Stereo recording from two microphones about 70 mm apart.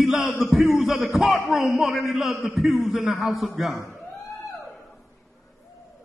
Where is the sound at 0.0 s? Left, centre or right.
Centre.